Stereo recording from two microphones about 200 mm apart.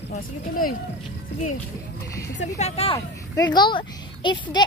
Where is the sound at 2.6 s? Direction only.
30° left (ahead or behind).